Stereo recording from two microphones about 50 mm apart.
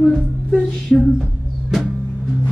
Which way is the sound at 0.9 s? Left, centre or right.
Centre.